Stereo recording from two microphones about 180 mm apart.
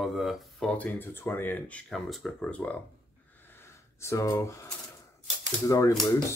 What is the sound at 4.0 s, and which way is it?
Speech, 15° left (ahead or behind).